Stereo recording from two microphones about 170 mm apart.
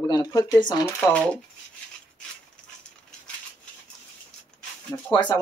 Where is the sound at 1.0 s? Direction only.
5° left (ahead or behind).